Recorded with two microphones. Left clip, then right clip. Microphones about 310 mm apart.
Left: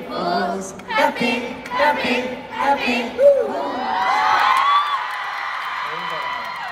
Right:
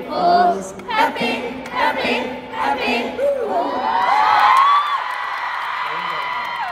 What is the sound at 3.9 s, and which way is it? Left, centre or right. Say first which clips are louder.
Crowd: right 2 dB; right.